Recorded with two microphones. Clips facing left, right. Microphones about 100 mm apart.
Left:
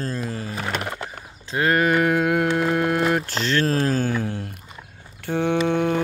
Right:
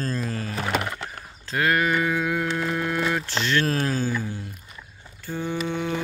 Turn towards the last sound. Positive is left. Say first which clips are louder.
# left 7 dB
turn(degrees=55)  # may be behind; listen again after turning